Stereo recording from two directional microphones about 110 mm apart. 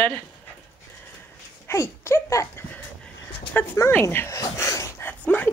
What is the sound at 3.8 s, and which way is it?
Speech, 25° left (ahead or behind).